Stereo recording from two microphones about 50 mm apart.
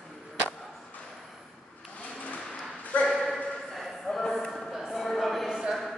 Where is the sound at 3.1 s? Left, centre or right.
Centre.